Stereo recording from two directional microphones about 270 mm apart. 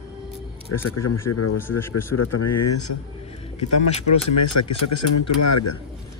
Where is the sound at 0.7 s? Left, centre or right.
Left.